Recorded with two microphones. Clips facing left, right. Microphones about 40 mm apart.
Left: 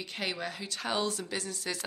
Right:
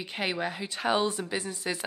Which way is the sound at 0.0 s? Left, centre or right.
Right.